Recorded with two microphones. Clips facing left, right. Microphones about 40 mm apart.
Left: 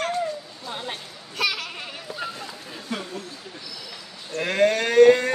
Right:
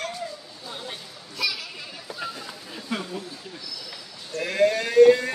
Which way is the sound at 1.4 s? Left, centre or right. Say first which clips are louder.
Left 3 dB; left.